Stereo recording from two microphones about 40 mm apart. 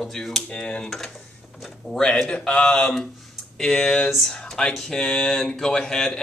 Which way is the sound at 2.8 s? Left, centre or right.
Centre.